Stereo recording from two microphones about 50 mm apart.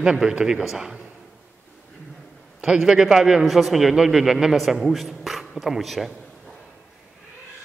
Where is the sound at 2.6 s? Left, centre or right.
Centre.